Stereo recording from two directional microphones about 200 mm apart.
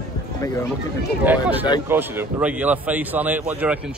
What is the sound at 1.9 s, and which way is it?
A man's voice, 10° right (ahead or behind).